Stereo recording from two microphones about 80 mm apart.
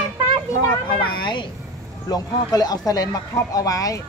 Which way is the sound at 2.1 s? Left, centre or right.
Left.